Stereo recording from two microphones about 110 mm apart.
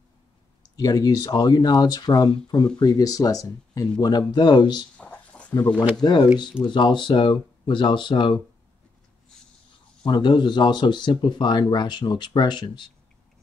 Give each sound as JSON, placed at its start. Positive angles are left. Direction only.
{"t": 0.7, "sound": "speech", "side_deg": 35}
{"t": 4.9, "sound": "a sound", "side_deg": 10}
{"t": 5.9, "sound": "speech", "side_deg": 40}
{"t": 10.0, "sound": "speech", "side_deg": 45}